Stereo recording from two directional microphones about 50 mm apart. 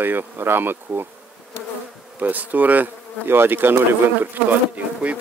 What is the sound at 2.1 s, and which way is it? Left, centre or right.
Speech, right.